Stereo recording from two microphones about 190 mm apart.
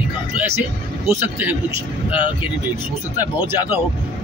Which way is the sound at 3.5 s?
10° right (ahead or behind).